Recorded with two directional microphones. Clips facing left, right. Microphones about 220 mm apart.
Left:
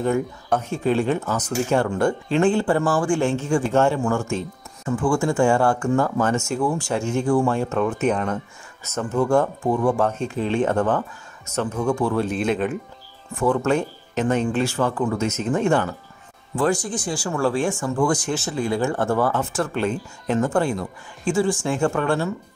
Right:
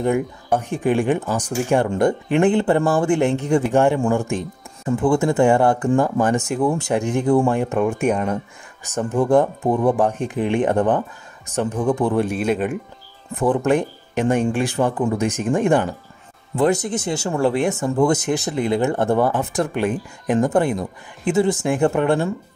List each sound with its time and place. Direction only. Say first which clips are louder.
0.0 s speech: right 2 dB; 15° right (ahead or behind)